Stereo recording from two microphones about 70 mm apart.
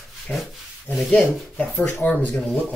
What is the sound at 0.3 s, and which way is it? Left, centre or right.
Speech, centre.